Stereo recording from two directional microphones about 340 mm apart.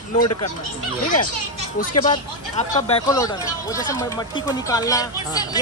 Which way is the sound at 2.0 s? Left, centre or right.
Centre.